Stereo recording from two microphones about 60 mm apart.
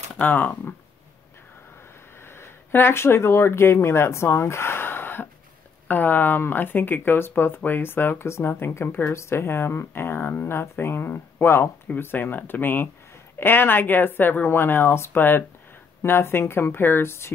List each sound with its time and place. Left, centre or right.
0.2 s speech: left
2.2 s speech: left
9.1 s speech: left
12.0 s speech: left